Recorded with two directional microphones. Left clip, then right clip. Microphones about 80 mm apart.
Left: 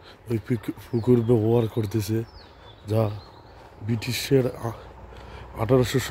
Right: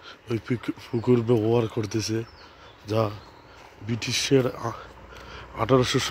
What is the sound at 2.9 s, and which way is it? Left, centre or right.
Speech, left.